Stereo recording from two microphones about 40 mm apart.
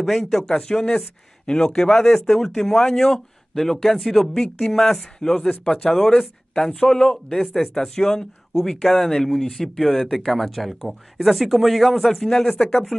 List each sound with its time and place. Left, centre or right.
0.0 s speech: centre
0.5 s speech: centre
4.4 s speech: centre
8.5 s speech: centre
12.3 s speech: centre